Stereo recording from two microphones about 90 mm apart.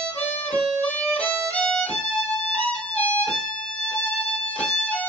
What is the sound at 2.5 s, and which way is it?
Music, 15° left (ahead or behind).